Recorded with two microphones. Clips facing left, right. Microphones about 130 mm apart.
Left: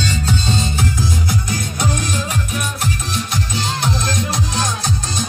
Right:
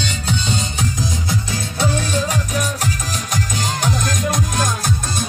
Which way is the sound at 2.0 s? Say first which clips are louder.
Right 2 dB; 35° right (ahead or behind).